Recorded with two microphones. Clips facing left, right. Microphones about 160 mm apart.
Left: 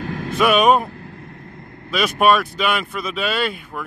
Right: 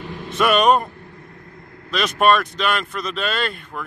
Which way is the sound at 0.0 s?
90° left.